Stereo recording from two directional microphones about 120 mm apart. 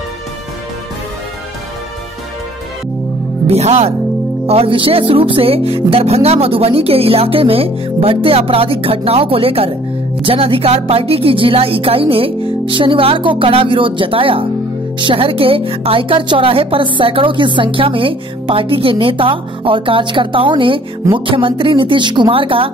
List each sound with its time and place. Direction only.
3.4 s speech: 65° right (ahead or behind)
4.5 s a woman's voice: 50° right (ahead or behind)